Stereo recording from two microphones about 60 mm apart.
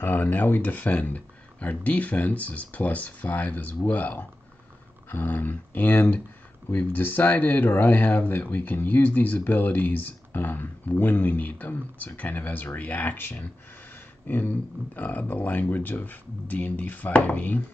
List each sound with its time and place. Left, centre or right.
0.0 s speech: left
14.2 s a sound: left
15.0 s speech: left